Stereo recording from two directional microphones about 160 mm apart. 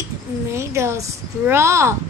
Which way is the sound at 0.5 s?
15° right (ahead or behind).